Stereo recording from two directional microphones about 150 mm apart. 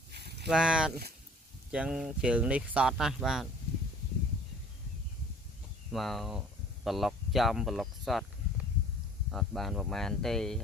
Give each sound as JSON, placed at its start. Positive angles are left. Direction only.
{"t": 0.1, "sound": "a sound", "side_deg": -90}
{"t": 0.5, "sound": "speech", "side_deg": -5}
{"t": 5.9, "sound": "speech", "side_deg": 0}
{"t": 9.3, "sound": "speech", "side_deg": 0}